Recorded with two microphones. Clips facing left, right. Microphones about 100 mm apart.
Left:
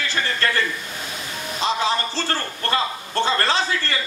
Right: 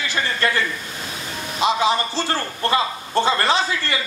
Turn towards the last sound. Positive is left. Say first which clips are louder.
# right 2 dB
turn(degrees=-15)  # may be behind; listen again after turning